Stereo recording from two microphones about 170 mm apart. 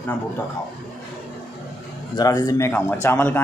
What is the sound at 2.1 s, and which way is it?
Speech, 20° left (ahead or behind).